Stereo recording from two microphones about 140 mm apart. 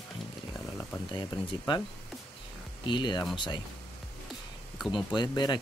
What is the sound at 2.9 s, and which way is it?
Speech, 35° left (ahead or behind).